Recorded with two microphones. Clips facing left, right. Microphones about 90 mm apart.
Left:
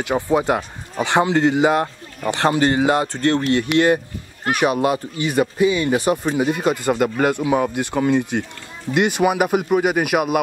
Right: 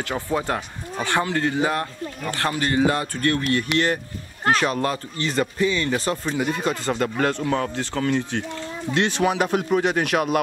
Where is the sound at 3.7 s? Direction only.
15° left (ahead or behind).